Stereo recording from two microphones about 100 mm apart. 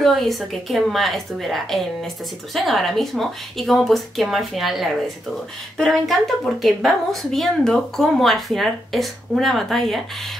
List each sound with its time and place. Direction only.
0.0 s a woman's voice: centre (ahead or behind)